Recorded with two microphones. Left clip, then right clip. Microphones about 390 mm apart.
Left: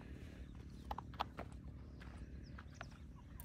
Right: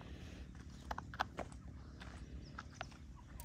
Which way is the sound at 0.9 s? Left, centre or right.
Right.